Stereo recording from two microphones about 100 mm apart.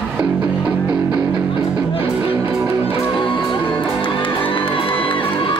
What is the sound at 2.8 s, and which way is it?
Music, 60° left (ahead or behind).